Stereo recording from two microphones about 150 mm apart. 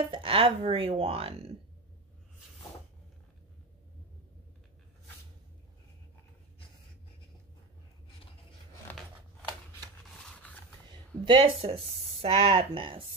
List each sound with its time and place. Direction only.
0.1 s speech: 35° right (ahead or behind)
8.9 s scissors: 10° left (ahead or behind)
11.2 s speech: 35° right (ahead or behind)